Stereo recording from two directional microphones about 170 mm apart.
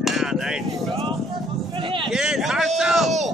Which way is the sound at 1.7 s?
30° right (ahead or behind).